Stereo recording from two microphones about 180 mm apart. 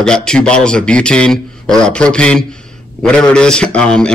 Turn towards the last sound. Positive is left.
turn(degrees=5)  # may be behind; listen again after turning